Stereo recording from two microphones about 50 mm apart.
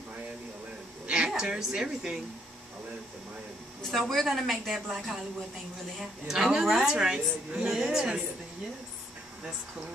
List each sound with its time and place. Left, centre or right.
1.0 s a woman's voice: centre
4.3 s a woman's voice: centre